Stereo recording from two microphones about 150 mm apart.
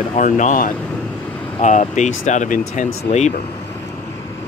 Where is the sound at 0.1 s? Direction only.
55° left (ahead or behind).